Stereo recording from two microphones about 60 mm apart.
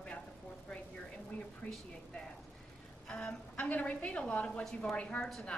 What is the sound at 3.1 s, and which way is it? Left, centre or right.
A woman's voice, centre.